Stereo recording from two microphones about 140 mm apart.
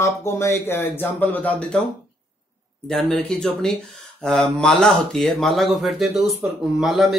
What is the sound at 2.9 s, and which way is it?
Speech, 5° left (ahead or behind).